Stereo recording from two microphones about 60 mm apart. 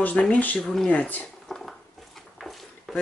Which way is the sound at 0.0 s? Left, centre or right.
Left.